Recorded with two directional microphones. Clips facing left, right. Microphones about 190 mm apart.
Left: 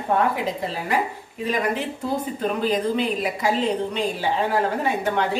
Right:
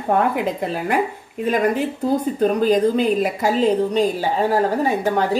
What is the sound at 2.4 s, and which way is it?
A woman's voice, 40° right (ahead or behind).